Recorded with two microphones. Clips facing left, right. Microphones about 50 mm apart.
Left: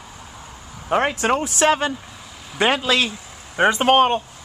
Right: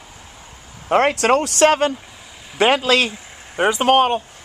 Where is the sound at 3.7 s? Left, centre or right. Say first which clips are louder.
Right 1 dB; left.